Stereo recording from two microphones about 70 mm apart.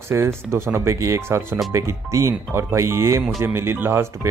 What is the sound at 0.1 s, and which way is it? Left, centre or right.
Speech, right.